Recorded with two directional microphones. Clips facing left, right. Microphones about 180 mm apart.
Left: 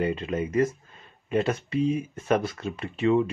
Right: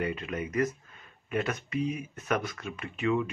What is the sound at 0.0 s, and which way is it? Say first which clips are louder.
Speech: left 6 dB; 30° left (ahead or behind).